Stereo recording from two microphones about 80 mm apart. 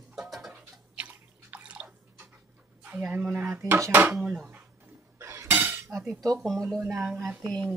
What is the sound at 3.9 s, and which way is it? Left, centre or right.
Speech, right.